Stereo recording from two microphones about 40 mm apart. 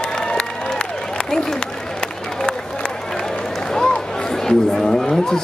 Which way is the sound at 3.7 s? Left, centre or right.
Centre.